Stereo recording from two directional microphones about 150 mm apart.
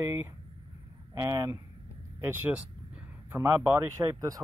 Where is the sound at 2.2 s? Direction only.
15° right (ahead or behind).